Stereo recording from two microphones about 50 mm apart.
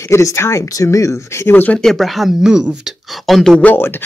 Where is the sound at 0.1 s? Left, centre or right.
Left.